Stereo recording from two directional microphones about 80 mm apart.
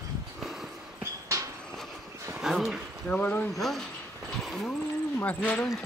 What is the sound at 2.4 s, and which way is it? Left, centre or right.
Speech, centre.